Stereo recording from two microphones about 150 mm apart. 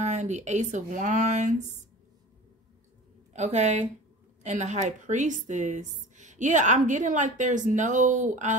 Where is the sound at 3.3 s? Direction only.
50° right (ahead or behind).